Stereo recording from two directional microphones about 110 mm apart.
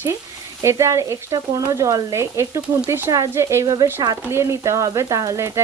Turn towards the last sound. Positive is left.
turn(degrees=-25)  # may be behind; listen again after turning